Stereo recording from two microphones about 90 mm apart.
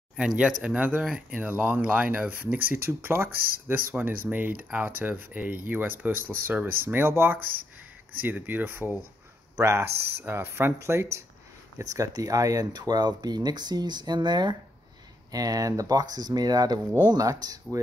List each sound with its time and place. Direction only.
0.4 s speech: 10° right (ahead or behind); by 14.5 s 55° right (ahead or behind)
15.3 s speech: 45° right (ahead or behind)